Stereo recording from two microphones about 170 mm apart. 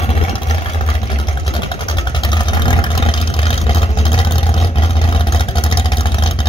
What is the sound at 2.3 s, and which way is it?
Vehicle, 25° left (ahead or behind).